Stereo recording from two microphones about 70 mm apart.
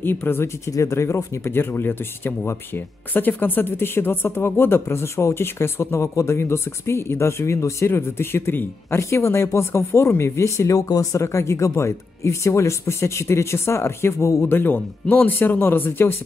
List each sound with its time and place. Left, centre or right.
0.0 s speech: left
0.7 s speech: left